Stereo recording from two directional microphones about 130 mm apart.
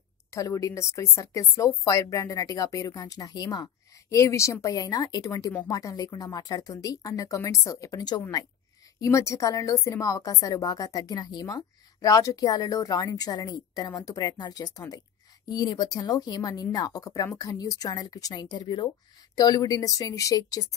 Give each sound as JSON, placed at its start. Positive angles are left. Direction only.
{"t": 0.3, "sound": "a woman's voice", "side_deg": 25}